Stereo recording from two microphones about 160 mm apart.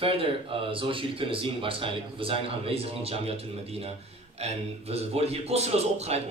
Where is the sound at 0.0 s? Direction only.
35° right (ahead or behind).